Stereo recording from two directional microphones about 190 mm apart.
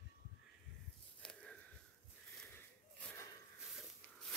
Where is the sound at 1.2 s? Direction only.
5° left (ahead or behind).